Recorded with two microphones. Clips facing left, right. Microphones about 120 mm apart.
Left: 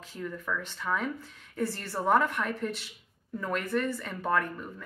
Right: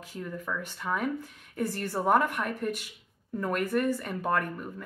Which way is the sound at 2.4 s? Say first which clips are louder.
Right 1 dB; 50° right (ahead or behind).